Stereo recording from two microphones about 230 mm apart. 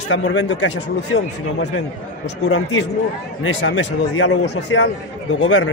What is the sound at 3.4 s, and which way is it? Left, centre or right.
Speech, left.